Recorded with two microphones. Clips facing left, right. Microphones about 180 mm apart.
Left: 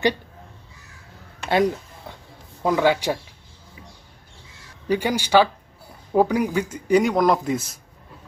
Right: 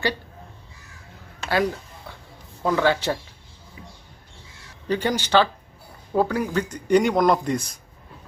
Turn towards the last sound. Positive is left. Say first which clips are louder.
# even
turn(degrees=5)  # may be behind; listen again after turning